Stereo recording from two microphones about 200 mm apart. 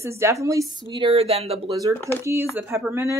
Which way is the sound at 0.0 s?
15° right (ahead or behind).